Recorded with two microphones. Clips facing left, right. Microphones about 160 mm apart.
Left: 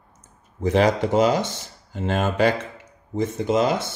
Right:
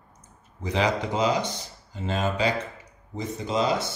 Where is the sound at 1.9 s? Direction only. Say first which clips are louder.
Left 4 dB; 60° left (ahead or behind).